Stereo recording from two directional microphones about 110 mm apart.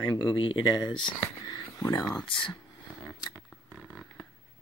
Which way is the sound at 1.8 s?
25° left (ahead or behind).